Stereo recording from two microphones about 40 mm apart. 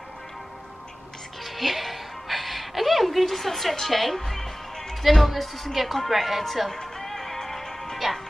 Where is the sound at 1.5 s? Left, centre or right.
Centre.